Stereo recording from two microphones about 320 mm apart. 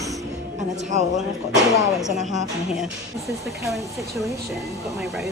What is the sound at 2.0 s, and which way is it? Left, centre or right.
A woman's voice, centre.